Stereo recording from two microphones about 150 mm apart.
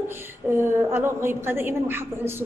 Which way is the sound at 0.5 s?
15° right (ahead or behind).